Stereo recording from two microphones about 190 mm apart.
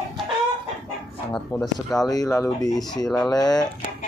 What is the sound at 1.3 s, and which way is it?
Speech, 5° left (ahead or behind).